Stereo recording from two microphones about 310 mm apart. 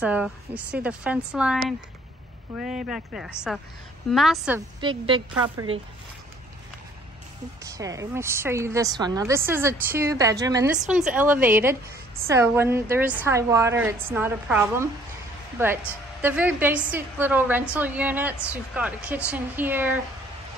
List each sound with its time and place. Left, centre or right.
0.0 s a woman's voice: centre
4.7 s a woman's voice: centre
7.6 s a woman's voice: centre